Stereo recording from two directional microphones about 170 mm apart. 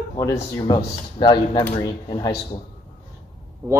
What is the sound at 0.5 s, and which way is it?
Speech, 25° left (ahead or behind).